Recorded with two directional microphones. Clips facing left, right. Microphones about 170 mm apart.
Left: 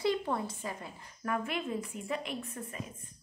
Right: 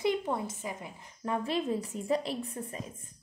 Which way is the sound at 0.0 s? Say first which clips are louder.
Right 1 dB; 20° right (ahead or behind).